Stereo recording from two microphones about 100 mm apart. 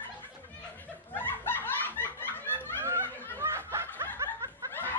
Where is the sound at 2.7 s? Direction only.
25° right (ahead or behind).